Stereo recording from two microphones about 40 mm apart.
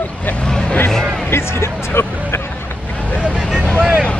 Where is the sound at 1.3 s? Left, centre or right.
Left.